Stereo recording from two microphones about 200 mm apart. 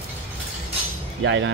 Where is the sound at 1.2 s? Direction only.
65° right (ahead or behind).